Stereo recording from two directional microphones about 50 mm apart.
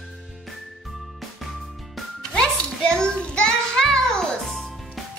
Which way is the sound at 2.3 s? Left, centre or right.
Centre.